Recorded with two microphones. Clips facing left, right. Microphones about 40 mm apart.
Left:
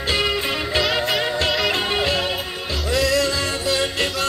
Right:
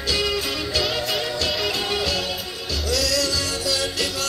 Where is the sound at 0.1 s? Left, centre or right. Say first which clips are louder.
Left 2 dB; left.